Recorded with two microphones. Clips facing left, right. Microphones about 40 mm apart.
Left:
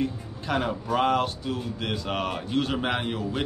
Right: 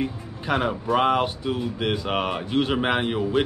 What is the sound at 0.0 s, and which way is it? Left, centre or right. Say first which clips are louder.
A man's voice: right 1 dB; centre.